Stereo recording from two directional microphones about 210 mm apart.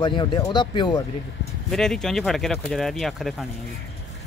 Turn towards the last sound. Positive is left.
turn(degrees=0)  # may be behind; listen again after turning